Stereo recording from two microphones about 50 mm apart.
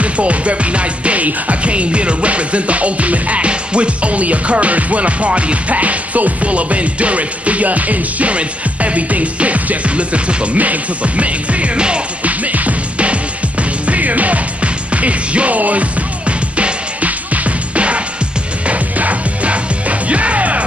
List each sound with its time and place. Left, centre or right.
0.0 s music: right